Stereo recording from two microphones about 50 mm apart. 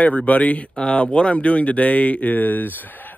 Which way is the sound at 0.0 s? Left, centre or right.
Left.